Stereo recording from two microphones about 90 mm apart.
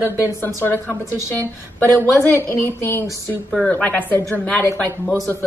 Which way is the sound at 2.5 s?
20° left (ahead or behind).